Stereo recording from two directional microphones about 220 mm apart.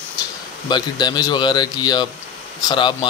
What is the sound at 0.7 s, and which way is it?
Speech, 20° left (ahead or behind).